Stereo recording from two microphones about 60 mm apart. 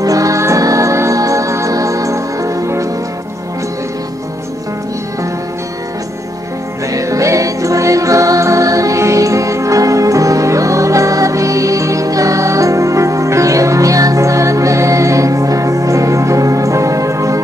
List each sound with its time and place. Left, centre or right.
0.0 s music: right
6.9 s music: right